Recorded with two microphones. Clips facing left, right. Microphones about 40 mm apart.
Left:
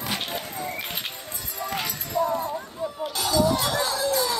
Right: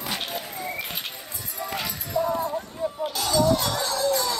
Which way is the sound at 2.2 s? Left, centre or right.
Left.